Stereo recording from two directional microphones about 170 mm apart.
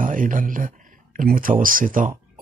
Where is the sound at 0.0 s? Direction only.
50° right (ahead or behind).